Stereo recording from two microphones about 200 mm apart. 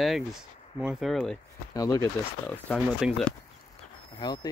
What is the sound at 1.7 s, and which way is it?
Speech, 20° left (ahead or behind).